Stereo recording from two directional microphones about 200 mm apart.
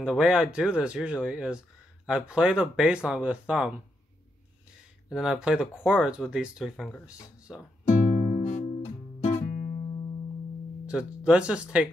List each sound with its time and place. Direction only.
0.0 s speech: 5° right (ahead or behind)
5.1 s speech: 5° right (ahead or behind)
7.8 s music: 35° left (ahead or behind)
10.9 s speech: 5° right (ahead or behind)